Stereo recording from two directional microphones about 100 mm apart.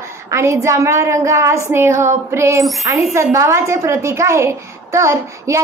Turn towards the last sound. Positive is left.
turn(degrees=-30)  # may be behind; listen again after turning